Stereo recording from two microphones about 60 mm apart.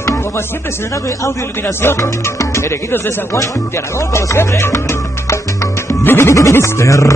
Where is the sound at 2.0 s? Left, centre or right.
Left.